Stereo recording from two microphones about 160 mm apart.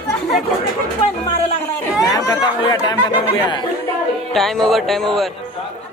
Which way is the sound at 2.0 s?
25° left (ahead or behind).